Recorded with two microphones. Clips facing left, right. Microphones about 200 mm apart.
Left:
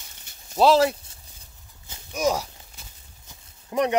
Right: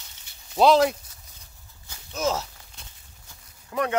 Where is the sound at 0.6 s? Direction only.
5° left (ahead or behind).